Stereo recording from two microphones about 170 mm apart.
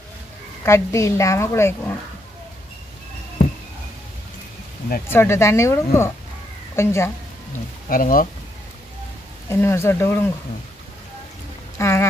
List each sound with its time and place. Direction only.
0.7 s speech: 15° left (ahead or behind)
5.0 s a woman's voice: 15° left (ahead or behind)
7.9 s speech: 55° left (ahead or behind)
9.5 s speech: 15° left (ahead or behind)
11.8 s a sound: 15° left (ahead or behind)